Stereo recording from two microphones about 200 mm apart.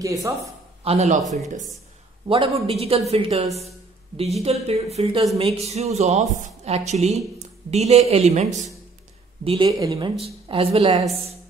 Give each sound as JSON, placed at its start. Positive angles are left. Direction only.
{"t": 0.0, "sound": "speech", "side_deg": -15}
{"t": 0.8, "sound": "a woman's voice", "side_deg": -35}
{"t": 2.2, "sound": "a man's voice", "side_deg": -30}
{"t": 9.7, "sound": "a man's voice", "side_deg": -15}